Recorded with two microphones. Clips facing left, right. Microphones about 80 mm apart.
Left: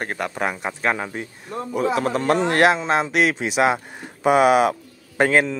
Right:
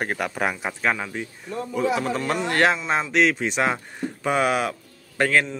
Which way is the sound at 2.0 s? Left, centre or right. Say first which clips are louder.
Left 3 dB; left.